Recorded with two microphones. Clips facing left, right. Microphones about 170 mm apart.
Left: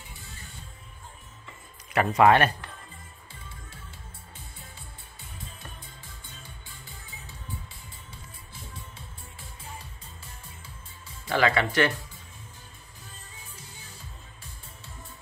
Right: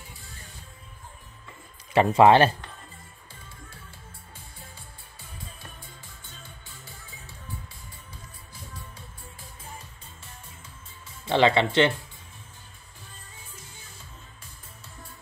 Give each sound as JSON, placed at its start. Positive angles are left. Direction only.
{"t": 2.0, "sound": "speech", "side_deg": -25}
{"t": 11.2, "sound": "speech", "side_deg": -25}